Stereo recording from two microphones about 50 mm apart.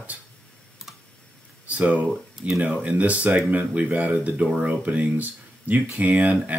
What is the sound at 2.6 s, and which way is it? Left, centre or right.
Speech, right.